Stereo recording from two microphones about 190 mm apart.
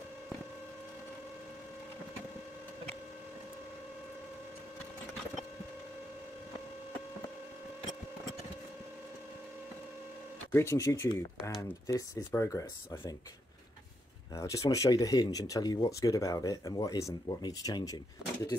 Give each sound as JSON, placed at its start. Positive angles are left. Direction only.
{"t": 10.5, "sound": "speech", "side_deg": 15}
{"t": 14.3, "sound": "speech", "side_deg": 15}